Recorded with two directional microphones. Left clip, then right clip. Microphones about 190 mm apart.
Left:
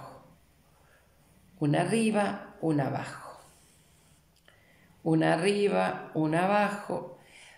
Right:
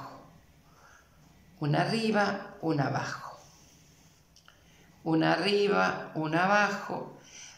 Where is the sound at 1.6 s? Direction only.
15° left (ahead or behind).